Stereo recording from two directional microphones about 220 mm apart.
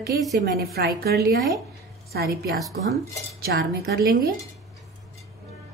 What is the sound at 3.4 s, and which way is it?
Speech, 45° right (ahead or behind).